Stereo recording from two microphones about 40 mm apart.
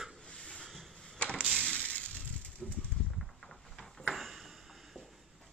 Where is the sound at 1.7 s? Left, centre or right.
Left.